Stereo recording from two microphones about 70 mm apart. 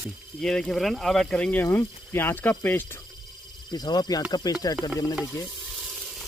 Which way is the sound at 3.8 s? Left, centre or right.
Left.